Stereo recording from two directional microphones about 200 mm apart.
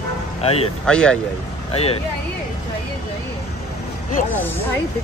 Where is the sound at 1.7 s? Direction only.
30° left (ahead or behind).